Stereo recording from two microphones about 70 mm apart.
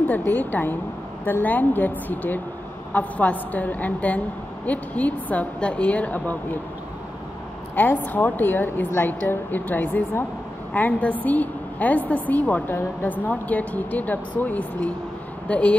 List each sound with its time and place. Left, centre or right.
0.0 s a woman's voice: left
7.7 s a woman's voice: left